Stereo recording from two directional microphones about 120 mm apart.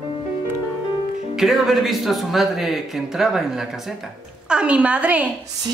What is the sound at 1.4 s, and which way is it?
Speech, centre (ahead or behind).